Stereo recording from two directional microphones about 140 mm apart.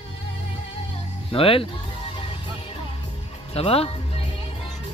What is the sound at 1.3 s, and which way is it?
Speech, 40° left (ahead or behind).